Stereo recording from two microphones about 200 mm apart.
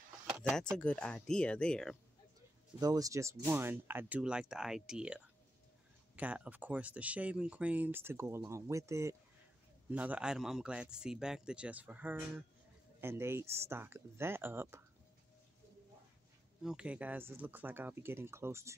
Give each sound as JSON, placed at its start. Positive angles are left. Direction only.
{"t": 0.7, "sound": "a man's voice", "side_deg": 5}
{"t": 2.8, "sound": "a man's voice", "side_deg": -15}
{"t": 16.6, "sound": "speech", "side_deg": -5}